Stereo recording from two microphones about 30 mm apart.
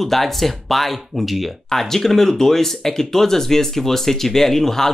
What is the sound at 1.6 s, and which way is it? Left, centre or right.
Speech, centre.